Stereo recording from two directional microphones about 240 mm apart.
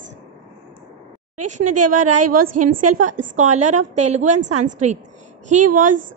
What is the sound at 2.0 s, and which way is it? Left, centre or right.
A woman's voice, right.